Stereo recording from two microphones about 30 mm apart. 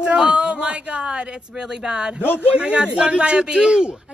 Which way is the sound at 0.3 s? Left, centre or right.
Right.